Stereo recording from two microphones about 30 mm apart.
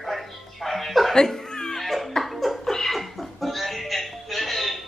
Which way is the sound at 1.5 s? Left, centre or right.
Left.